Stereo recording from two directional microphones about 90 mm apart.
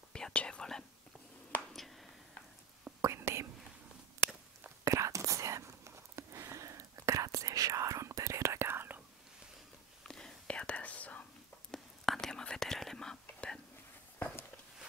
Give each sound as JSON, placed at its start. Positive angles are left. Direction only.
{"t": 0.1, "sound": "whispering", "side_deg": 10}
{"t": 1.7, "sound": "a sound", "side_deg": 0}
{"t": 3.0, "sound": "whispering", "side_deg": -30}
{"t": 4.8, "sound": "whispering", "side_deg": -35}
{"t": 10.0, "sound": "whispering", "side_deg": 10}
{"t": 11.7, "sound": "whispering", "side_deg": 5}